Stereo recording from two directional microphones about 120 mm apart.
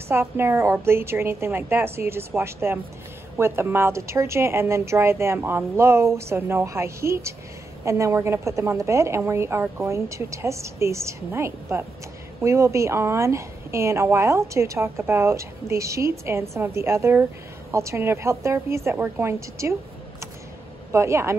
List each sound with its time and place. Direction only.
0.1 s a woman's voice: 20° right (ahead or behind)
20.9 s a woman's voice: 20° right (ahead or behind)